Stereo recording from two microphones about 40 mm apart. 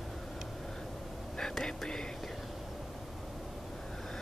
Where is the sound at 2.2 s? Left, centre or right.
Centre.